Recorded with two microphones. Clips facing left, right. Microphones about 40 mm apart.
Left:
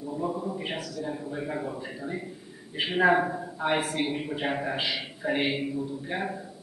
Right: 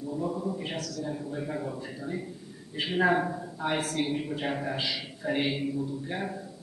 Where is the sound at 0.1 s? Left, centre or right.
Centre.